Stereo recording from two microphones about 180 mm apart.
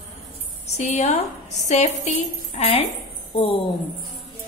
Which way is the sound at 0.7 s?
40° left (ahead or behind).